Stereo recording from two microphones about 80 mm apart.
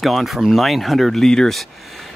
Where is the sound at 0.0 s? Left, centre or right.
Centre.